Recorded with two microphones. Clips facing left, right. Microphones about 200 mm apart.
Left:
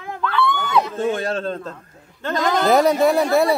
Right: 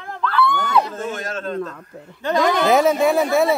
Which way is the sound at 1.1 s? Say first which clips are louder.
Left 2 dB; 30° left (ahead or behind).